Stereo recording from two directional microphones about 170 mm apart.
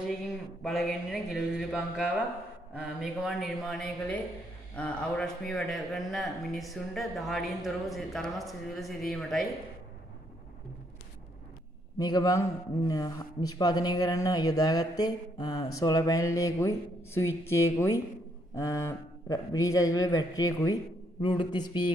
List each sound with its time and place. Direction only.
0.6 s a man's voice: centre (ahead or behind)
12.0 s a man's voice: 20° left (ahead or behind)